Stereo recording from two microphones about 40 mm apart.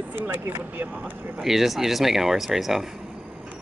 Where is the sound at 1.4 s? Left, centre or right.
Centre.